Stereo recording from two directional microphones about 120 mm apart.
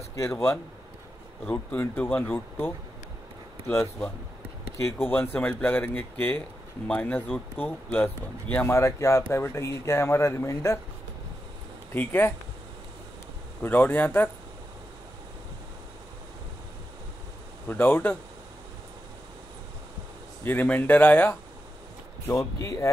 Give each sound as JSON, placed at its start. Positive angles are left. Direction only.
{"t": 0.1, "sound": "a man's voice", "side_deg": 25}
{"t": 1.4, "sound": "speech", "side_deg": 15}
{"t": 11.9, "sound": "speech", "side_deg": 15}
{"t": 13.6, "sound": "speech", "side_deg": 15}
{"t": 17.6, "sound": "speech", "side_deg": 15}
{"t": 20.4, "sound": "speech", "side_deg": 15}